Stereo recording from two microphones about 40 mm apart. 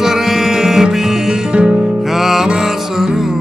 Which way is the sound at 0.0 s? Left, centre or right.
Centre.